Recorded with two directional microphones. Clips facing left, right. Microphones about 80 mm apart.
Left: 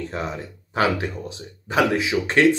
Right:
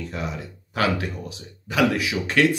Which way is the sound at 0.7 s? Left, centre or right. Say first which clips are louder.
Left 2 dB; left.